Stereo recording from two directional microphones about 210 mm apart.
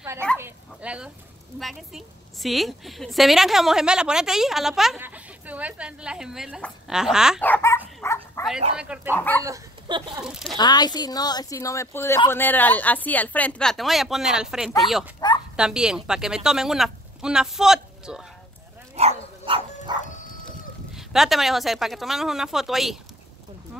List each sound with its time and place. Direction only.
0.4 s dog: 5° right (ahead or behind)
1.6 s a woman's voice: centre (ahead or behind)
7.4 s speech: 10° left (ahead or behind)
8.0 s dog: 15° left (ahead or behind)
8.7 s a woman's voice: 5° right (ahead or behind)
9.1 s speech: 10° left (ahead or behind)
9.4 s speech: 20° right (ahead or behind)
10.2 s a woman's voice: 5° right (ahead or behind)
10.6 s a woman's voice: 20° left (ahead or behind); by 18.2 s 5° right (ahead or behind)
18.9 s dog: 25° right (ahead or behind)
20.4 s speech: centre (ahead or behind)